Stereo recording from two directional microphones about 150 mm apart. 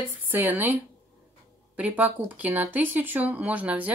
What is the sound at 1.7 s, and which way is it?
Speech, 10° right (ahead or behind).